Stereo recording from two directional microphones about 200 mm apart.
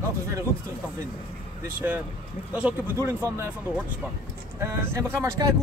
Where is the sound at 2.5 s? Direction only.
10° right (ahead or behind).